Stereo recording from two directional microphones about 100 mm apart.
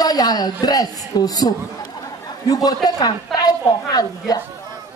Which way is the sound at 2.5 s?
40° left (ahead or behind).